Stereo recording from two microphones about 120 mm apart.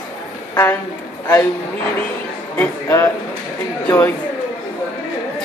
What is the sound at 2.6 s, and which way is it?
Speech, 15° left (ahead or behind).